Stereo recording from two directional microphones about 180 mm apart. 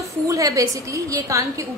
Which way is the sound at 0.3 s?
20° right (ahead or behind).